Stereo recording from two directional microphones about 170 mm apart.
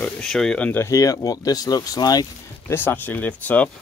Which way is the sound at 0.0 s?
5° left (ahead or behind).